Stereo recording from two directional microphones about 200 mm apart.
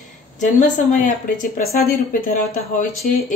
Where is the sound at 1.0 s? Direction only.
45° left (ahead or behind).